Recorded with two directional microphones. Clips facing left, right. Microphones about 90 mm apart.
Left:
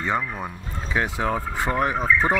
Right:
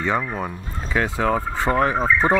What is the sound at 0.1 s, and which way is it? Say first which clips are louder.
Speech: right 2 dB; 20° right (ahead or behind).